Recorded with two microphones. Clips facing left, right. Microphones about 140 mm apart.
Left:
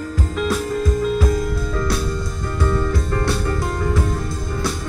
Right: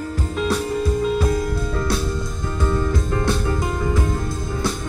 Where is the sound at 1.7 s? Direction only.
25° right (ahead or behind).